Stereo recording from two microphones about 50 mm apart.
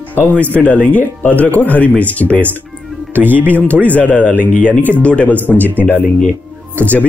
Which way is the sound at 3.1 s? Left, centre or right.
Right.